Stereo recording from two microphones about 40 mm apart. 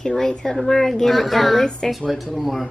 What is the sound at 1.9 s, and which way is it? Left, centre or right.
Speech, centre.